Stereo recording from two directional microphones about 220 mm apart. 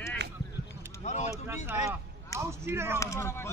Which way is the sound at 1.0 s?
30° left (ahead or behind).